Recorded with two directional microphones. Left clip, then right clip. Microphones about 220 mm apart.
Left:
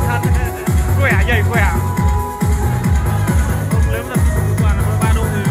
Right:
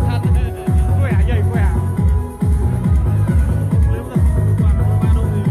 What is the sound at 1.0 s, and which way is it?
Music, 35° left (ahead or behind).